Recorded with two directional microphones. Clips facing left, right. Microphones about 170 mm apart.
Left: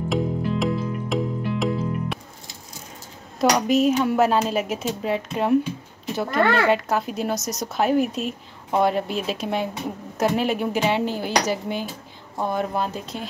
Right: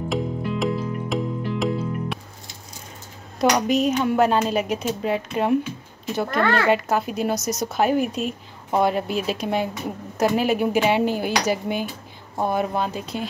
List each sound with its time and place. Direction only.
0.1 s music: centre (ahead or behind)
3.3 s speech: centre (ahead or behind)
12.7 s speech: centre (ahead or behind)